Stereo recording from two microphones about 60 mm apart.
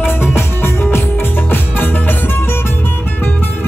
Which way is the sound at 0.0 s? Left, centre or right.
Left.